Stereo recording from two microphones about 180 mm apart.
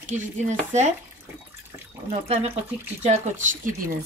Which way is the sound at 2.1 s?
35° right (ahead or behind).